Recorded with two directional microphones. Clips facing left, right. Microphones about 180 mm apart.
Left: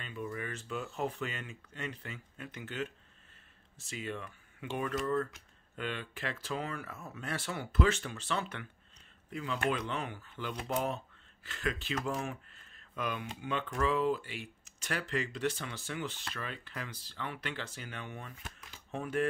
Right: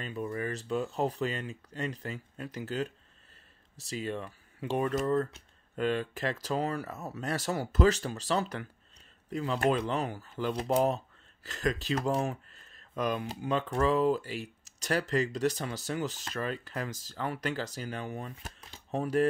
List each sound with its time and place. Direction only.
0.0 s speech: 40° right (ahead or behind)